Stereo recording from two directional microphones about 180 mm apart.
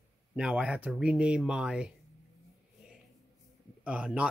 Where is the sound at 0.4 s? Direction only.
5° right (ahead or behind).